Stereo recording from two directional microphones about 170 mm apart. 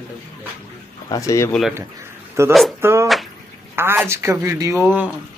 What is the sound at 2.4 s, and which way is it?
Speech, 15° right (ahead or behind).